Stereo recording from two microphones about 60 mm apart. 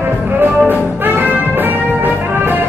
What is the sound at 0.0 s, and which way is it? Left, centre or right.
Music, right.